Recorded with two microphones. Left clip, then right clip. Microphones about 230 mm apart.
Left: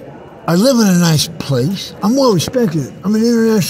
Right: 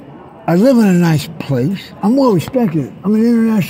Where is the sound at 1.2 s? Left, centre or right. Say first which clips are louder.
Left 2 dB; centre.